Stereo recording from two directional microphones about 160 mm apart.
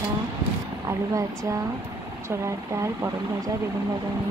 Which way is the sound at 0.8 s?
20° right (ahead or behind).